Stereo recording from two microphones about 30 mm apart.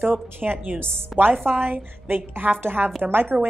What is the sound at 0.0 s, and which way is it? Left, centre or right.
A woman's voice, right.